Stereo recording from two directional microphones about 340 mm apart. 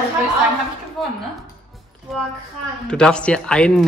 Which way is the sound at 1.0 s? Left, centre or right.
Centre.